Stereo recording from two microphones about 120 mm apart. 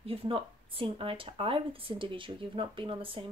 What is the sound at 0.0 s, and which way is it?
Speech, 50° right (ahead or behind).